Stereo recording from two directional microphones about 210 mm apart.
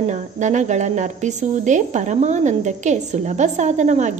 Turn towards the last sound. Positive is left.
turn(degrees=-35)  # may be behind; listen again after turning